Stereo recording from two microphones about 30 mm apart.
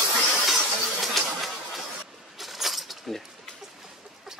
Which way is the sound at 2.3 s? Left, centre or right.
Centre.